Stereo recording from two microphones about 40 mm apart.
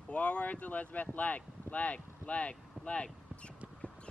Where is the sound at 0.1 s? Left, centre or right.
Left.